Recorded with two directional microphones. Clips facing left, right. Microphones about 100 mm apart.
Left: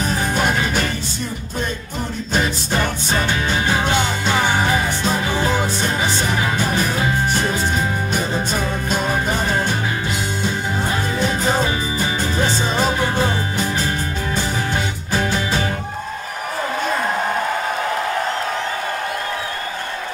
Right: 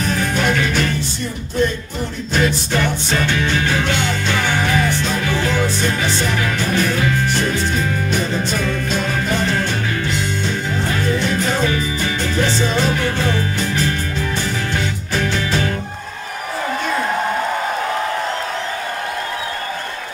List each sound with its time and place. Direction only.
0.4 s music: 15° left (ahead or behind)
2.7 s music: 15° left (ahead or behind)
8.6 s music: 20° left (ahead or behind)
10.9 s music: 20° left (ahead or behind)
15.1 s music: 15° left (ahead or behind)